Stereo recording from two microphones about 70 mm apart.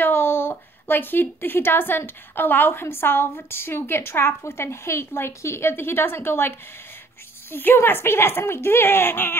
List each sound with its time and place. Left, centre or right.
0.0 s a woman's voice: left
7.5 s a woman's voice: left